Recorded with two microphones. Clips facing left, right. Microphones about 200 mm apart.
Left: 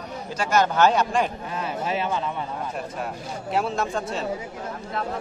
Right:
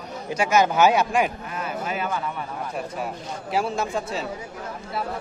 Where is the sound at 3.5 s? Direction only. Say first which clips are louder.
Even; centre (ahead or behind).